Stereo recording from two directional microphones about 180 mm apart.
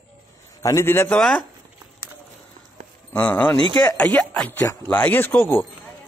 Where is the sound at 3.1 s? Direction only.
5° left (ahead or behind).